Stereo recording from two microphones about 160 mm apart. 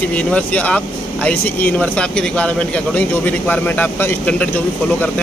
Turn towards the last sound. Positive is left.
turn(degrees=10)  # may be behind; listen again after turning